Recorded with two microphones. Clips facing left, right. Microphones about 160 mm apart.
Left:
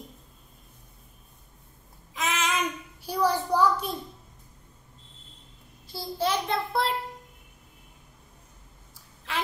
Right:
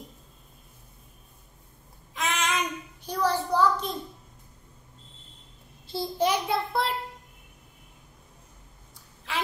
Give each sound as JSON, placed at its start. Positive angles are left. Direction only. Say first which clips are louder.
{"t": 2.1, "sound": "child singing", "louder": "even", "side_deg": 0}
{"t": 5.9, "sound": "a child's voice", "louder": "right 3 dB", "side_deg": -20}
{"t": 9.3, "sound": "a sound", "louder": "even", "side_deg": 0}